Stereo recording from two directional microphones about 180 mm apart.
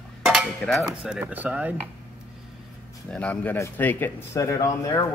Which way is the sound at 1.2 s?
10° right (ahead or behind).